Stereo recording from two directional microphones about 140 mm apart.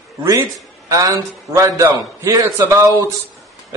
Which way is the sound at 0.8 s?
25° right (ahead or behind).